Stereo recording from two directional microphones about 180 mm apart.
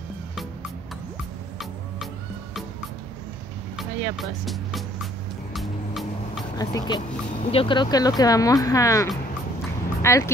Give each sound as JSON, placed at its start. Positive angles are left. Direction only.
{"t": 3.7, "sound": "speech", "side_deg": 0}
{"t": 5.5, "sound": "music", "side_deg": 0}
{"t": 6.6, "sound": "speech", "side_deg": 20}